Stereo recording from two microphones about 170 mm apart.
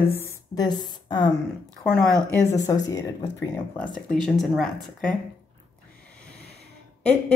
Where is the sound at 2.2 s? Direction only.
20° left (ahead or behind).